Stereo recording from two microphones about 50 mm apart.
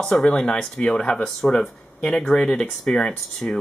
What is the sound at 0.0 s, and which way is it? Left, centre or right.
Speech, centre.